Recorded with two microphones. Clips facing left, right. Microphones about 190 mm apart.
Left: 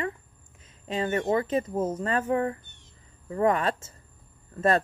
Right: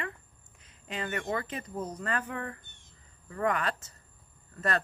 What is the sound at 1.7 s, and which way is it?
Speech, 50° left (ahead or behind).